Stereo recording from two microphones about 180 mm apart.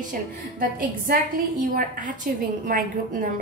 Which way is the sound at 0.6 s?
50° right (ahead or behind).